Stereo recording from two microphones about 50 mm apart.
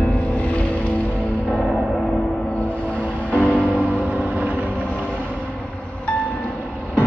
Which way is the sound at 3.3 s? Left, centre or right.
Left.